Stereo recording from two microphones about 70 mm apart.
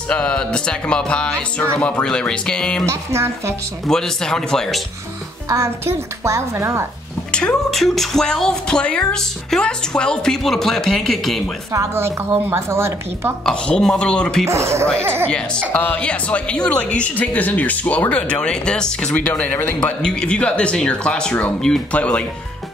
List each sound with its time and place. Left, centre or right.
0.1 s a woman's voice: centre
2.9 s a woman's voice: right
3.8 s a woman's voice: centre
5.5 s a woman's voice: right
7.2 s a sound: centre
7.7 s speech: centre
11.7 s a woman's voice: right
13.5 s a woman's voice: centre
14.5 s a woman's voice: right
15.2 s a woman's voice: centre
19.1 s speech: left
19.8 s a woman's voice: centre